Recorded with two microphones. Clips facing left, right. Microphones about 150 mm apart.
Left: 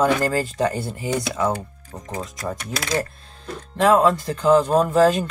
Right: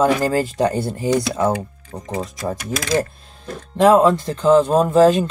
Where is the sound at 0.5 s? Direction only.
25° right (ahead or behind).